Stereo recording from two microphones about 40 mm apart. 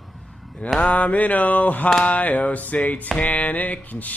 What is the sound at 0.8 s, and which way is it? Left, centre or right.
Mantra, left.